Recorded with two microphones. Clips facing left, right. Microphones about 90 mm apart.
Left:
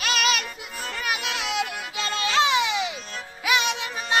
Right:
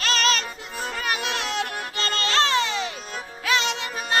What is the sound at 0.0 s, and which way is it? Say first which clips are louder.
Music: right 1 dB; 10° left (ahead or behind).